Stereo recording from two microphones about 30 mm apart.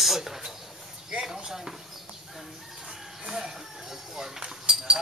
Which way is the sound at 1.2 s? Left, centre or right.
Centre.